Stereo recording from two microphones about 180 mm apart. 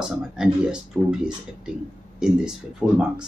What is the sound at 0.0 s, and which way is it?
Speech, 5° right (ahead or behind).